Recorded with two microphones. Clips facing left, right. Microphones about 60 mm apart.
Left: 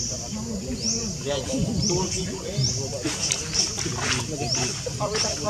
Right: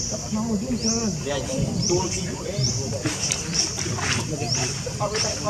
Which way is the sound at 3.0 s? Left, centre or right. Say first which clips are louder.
Right 2 dB; centre.